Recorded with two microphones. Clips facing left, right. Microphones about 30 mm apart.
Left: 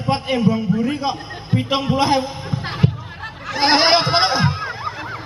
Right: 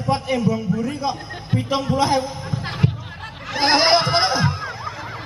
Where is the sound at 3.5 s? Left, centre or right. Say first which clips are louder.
Left 1 dB; centre.